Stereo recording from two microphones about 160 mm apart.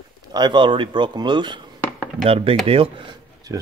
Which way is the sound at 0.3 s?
30° right (ahead or behind).